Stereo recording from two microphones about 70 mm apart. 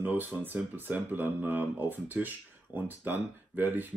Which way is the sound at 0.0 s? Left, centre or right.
Right.